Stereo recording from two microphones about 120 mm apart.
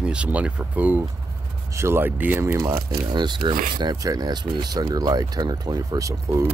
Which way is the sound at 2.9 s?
40° right (ahead or behind).